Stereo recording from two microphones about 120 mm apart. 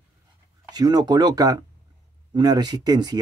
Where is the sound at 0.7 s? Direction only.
30° right (ahead or behind).